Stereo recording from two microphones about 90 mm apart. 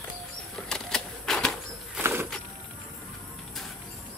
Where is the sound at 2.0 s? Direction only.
25° right (ahead or behind).